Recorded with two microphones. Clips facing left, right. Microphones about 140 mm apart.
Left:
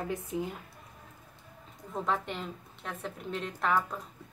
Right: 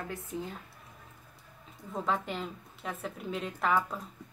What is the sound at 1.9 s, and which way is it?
A woman's voice, centre (ahead or behind).